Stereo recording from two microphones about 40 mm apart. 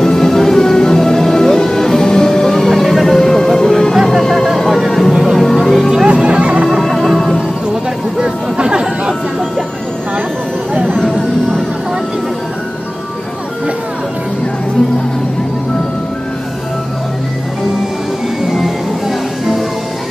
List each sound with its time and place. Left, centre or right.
0.0 s music: centre
3.2 s music: centre
3.9 s music: centre
4.2 s vehicle: centre
4.6 s music: centre
6.0 s music: right
6.8 s music: centre
7.2 s music: centre
8.2 s a sound: right
10.9 s vehicle: centre
18.5 s music: centre